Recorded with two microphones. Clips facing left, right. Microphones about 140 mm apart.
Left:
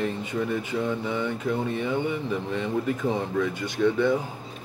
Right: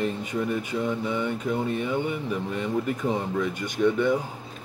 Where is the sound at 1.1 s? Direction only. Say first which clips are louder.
Even; 15° right (ahead or behind).